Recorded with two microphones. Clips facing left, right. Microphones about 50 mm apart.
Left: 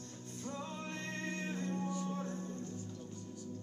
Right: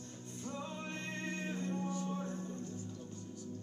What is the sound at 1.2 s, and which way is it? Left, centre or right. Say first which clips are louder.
Music: even; right.